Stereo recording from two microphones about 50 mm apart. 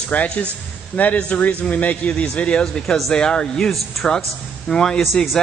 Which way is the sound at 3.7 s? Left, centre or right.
Centre.